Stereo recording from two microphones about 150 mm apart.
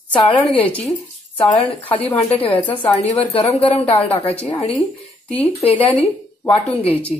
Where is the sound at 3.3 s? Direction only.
40° left (ahead or behind).